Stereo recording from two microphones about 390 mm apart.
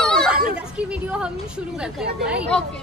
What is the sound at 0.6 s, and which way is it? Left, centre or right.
Chatter, centre.